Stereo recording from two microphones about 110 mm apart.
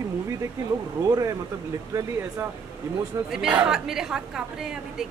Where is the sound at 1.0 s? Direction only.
30° right (ahead or behind).